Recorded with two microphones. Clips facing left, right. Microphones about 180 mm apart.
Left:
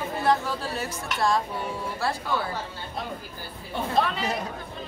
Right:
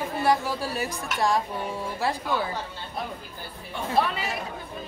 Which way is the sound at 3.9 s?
5° right (ahead or behind).